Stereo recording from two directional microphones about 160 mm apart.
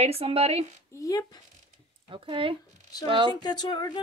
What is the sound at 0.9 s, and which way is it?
Speech, 20° left (ahead or behind).